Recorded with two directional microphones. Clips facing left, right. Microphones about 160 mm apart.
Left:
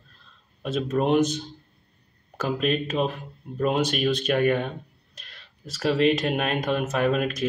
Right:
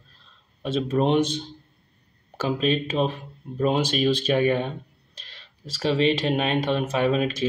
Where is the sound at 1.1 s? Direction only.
30° right (ahead or behind).